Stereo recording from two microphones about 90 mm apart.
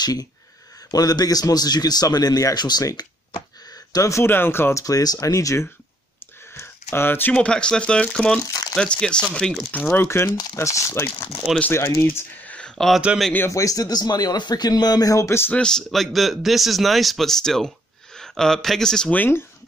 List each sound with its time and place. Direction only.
0.0 s speech: 45° left (ahead or behind); by 4.8 s 25° left (ahead or behind)
4.8 s speech: 45° left (ahead or behind)
6.5 s a sound: 25° left (ahead or behind)
7.3 s speech: 10° left (ahead or behind)
9.7 s speech: 20° left (ahead or behind)
12.5 s a sound: 5° left (ahead or behind)
13.5 s speech: 40° left (ahead or behind)
15.5 s speech: 10° left (ahead or behind)
19.1 s speech: 20° left (ahead or behind)